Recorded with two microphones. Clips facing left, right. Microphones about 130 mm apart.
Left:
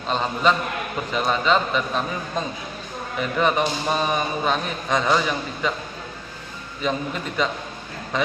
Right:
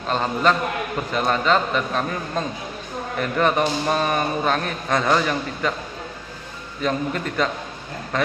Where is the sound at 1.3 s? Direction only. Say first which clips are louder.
Even; 15° left (ahead or behind).